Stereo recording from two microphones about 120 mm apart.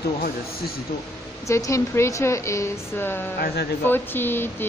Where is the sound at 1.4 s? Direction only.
25° left (ahead or behind).